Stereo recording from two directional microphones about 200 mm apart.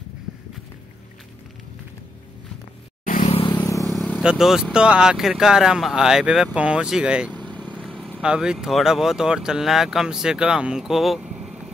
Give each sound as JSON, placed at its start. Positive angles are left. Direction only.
{"t": 3.1, "sound": "vehicle", "side_deg": 40}
{"t": 3.3, "sound": "vehicle", "side_deg": 25}
{"t": 3.9, "sound": "speech", "side_deg": 0}
{"t": 7.3, "sound": "vehicle", "side_deg": 5}
{"t": 7.7, "sound": "speech", "side_deg": 5}